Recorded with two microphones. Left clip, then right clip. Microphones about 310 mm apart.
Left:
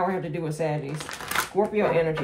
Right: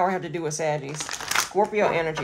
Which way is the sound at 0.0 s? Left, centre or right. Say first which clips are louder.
Right 3 dB; right.